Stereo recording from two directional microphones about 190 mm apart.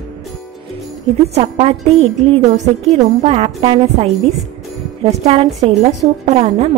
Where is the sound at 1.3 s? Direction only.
30° right (ahead or behind).